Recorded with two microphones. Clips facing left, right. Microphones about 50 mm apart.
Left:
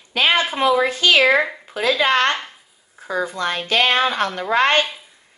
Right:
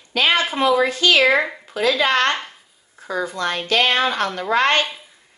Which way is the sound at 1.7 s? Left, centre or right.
Left.